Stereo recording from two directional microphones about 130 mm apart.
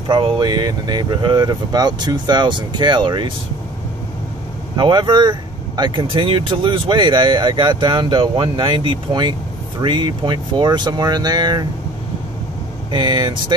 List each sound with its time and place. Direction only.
0.1 s speech: 35° right (ahead or behind)
4.7 s speech: 35° right (ahead or behind)
12.9 s speech: 35° right (ahead or behind)